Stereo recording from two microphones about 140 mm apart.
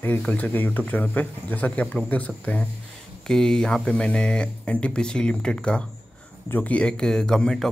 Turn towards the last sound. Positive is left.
turn(degrees=5)  # may be behind; listen again after turning